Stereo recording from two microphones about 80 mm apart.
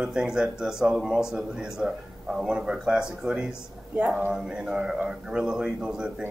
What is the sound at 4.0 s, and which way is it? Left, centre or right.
Speech, right.